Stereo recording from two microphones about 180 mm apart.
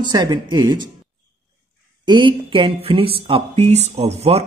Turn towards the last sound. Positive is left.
turn(degrees=-35)  # may be behind; listen again after turning